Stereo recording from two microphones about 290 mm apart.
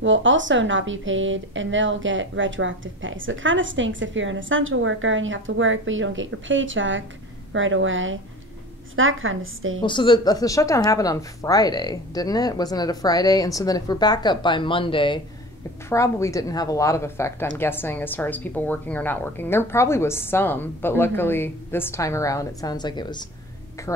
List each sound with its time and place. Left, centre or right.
0.0 s a woman's voice: right
9.8 s a woman's voice: centre